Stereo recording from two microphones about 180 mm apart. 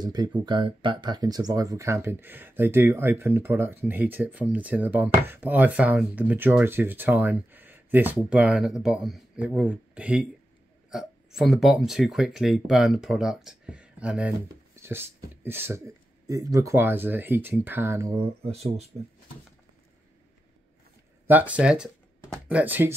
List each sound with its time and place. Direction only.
0.0 s speech: 20° right (ahead or behind)
18.4 s speech: 35° right (ahead or behind)
21.3 s speech: 10° right (ahead or behind)